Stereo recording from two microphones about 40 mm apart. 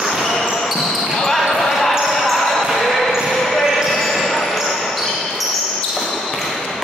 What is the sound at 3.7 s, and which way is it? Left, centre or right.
Basketball bounce, centre.